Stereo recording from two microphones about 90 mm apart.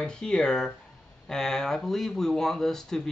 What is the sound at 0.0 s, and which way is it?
Speech, 10° left (ahead or behind).